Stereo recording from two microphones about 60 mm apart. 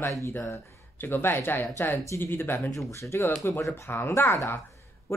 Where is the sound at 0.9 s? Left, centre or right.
Left.